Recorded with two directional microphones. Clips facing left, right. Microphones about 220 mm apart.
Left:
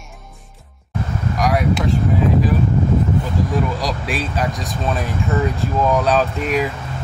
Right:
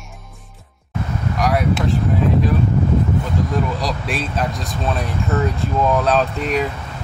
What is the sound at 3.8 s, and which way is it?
Speech, centre (ahead or behind).